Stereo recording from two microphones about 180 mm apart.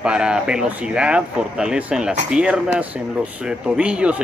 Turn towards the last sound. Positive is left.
turn(degrees=-5)  # may be behind; listen again after turning